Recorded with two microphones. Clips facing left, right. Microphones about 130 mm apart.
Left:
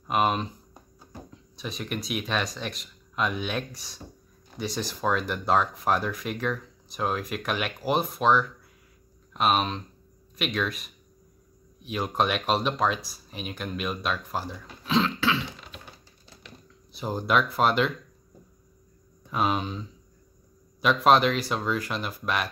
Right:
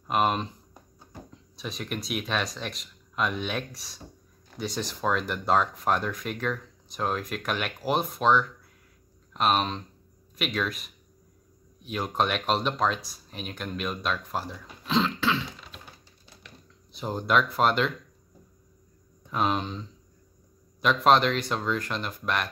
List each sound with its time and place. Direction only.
0.0 s speech: centre (ahead or behind)
16.9 s speech: 5° left (ahead or behind)
19.3 s speech: 5° left (ahead or behind)